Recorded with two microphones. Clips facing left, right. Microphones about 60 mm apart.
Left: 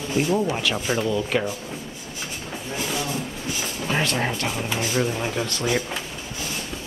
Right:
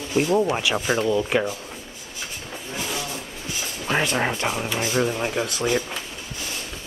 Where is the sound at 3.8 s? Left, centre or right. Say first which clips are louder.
Right 2 dB; centre.